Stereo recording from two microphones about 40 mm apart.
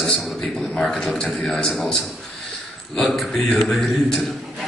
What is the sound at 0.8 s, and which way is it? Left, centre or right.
Speech, centre.